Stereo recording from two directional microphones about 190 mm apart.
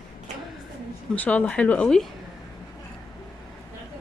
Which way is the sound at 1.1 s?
10° left (ahead or behind).